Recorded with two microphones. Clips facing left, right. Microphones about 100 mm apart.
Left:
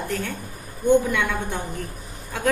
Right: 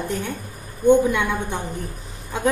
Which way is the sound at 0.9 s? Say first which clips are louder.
Right 3 dB; 20° right (ahead or behind).